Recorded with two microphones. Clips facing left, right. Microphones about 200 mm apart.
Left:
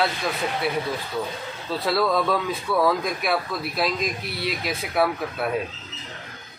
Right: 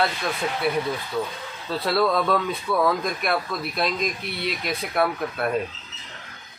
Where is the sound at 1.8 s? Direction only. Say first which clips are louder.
Even; centre (ahead or behind).